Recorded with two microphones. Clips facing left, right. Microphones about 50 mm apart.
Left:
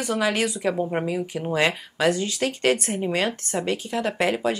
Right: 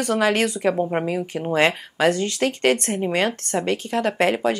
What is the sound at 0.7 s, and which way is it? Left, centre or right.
Speech, centre.